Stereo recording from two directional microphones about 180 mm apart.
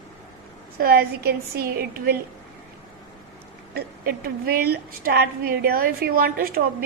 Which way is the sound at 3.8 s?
55° right (ahead or behind).